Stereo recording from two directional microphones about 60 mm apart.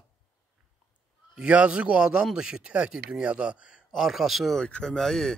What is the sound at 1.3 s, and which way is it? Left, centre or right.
A man's voice, centre.